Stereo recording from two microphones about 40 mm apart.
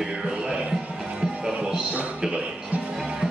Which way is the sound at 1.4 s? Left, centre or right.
Centre.